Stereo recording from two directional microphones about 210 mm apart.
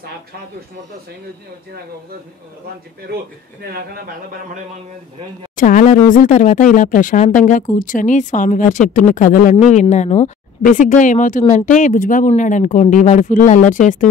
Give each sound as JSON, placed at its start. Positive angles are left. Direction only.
{"t": 5.6, "sound": "speech", "side_deg": 35}